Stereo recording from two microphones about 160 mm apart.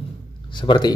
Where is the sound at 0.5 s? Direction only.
30° left (ahead or behind).